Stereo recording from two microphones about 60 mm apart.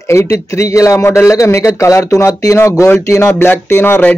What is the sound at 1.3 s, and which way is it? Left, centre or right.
Speech, left.